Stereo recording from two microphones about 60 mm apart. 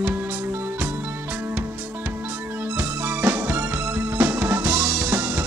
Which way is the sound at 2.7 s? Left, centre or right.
Right.